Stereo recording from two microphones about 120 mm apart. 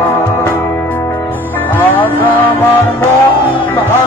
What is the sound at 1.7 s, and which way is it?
Music, 15° left (ahead or behind).